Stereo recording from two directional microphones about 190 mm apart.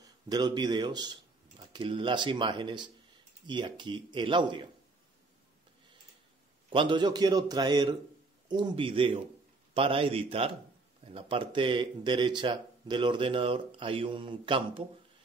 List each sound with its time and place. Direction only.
0.0 s a man's voice: 20° right (ahead or behind)
6.7 s speech: 25° right (ahead or behind)